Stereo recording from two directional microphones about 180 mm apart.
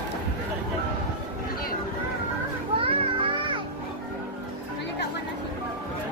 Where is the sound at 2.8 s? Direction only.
30° right (ahead or behind).